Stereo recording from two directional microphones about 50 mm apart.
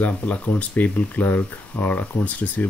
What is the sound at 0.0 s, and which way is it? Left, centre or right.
Speech, left.